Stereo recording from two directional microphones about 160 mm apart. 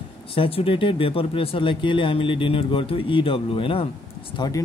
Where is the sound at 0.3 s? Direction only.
35° left (ahead or behind).